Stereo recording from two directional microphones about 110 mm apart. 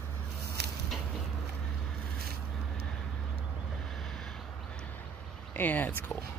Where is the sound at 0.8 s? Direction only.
Centre (ahead or behind).